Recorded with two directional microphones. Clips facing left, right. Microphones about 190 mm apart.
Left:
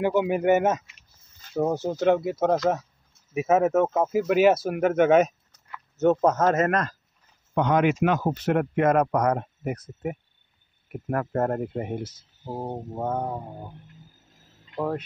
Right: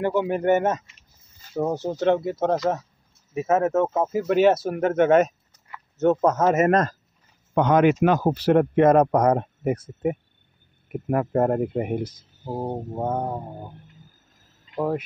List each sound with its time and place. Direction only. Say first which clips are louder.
0.0 s speech: even; 10° left (ahead or behind)
6.4 s speech: right 5 dB; 15° right (ahead or behind)
6.7 s speech: right 6 dB; 45° right (ahead or behind); by 13.3 s 10° right (ahead or behind)
14.8 s speech: right 3 dB; 10° right (ahead or behind)